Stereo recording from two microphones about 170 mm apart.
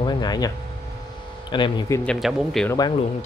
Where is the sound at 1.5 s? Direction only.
25° left (ahead or behind).